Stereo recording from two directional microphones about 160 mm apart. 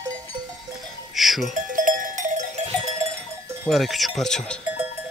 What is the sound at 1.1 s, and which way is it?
Speech, centre (ahead or behind).